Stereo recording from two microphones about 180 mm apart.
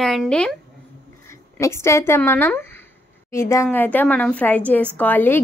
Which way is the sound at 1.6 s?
15° left (ahead or behind).